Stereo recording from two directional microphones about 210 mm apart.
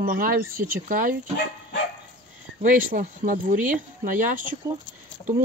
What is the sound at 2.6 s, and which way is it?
Speech, 40° right (ahead or behind).